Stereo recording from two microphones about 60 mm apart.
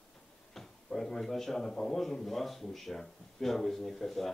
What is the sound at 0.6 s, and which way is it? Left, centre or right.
Speech, centre.